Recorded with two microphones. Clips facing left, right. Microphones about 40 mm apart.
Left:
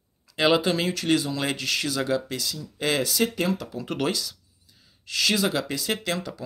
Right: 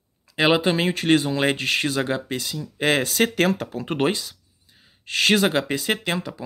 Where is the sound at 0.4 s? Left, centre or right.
Right.